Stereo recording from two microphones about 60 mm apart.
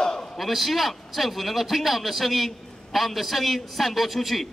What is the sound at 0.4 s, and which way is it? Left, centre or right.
Speech, centre.